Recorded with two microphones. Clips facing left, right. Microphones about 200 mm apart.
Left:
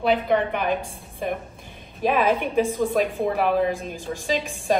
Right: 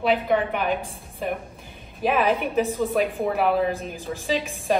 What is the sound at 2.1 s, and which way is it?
Speech, 15° right (ahead or behind).